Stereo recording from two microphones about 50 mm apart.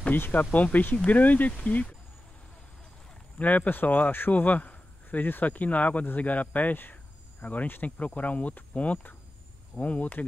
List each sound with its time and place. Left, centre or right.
0.1 s speech: left
3.3 s speech: left